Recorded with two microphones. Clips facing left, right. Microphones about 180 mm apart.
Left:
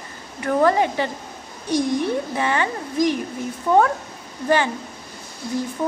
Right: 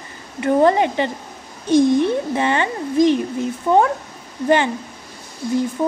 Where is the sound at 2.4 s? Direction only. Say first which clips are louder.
Right 3 dB; 25° right (ahead or behind).